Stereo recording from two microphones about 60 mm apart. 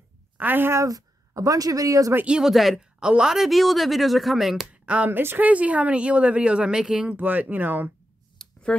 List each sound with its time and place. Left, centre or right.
0.4 s speech: right
0.7 s speech: right
2.4 s speech: centre
3.0 s a woman's voice: centre
3.3 s speech: centre
4.8 s speech: right
8.4 s a sound: centre